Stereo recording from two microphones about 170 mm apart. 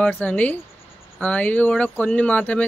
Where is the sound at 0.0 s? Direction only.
10° left (ahead or behind).